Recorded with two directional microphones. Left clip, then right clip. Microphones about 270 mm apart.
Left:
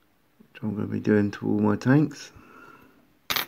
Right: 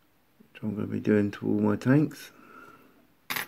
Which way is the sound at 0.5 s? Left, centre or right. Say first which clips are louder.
Left 2 dB; centre.